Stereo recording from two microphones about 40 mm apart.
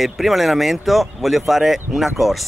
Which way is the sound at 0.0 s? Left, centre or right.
Centre.